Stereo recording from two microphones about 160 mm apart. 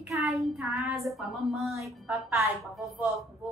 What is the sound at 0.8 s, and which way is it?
Speech, 20° right (ahead or behind).